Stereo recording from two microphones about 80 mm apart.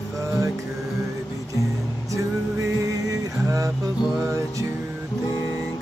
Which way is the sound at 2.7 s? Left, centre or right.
Right.